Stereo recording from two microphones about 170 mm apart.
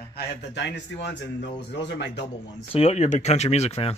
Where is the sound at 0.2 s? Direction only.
90° left.